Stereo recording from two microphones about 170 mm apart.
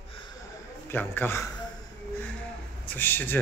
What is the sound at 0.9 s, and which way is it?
Speech, 10° left (ahead or behind).